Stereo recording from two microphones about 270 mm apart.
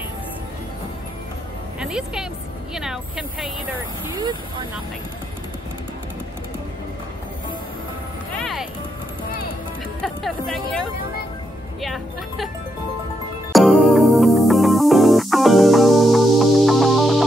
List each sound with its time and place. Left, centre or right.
1.8 s a woman's voice: centre
4.2 s speech: centre
8.4 s music: centre
10.0 s speech: centre
13.5 s music: centre